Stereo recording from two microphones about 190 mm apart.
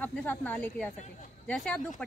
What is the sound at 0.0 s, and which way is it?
A woman's voice, 10° left (ahead or behind).